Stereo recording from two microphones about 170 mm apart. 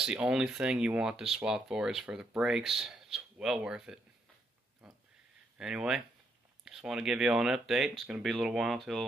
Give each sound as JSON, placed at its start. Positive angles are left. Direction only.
{"t": 0.0, "sound": "speech", "side_deg": -5}
{"t": 4.8, "sound": "a sound", "side_deg": -5}
{"t": 5.6, "sound": "speech", "side_deg": -5}